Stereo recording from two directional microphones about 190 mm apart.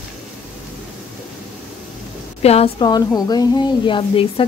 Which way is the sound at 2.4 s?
30° left (ahead or behind).